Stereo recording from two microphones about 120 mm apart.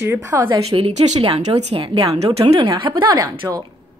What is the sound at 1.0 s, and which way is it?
A woman's voice, 65° right (ahead or behind).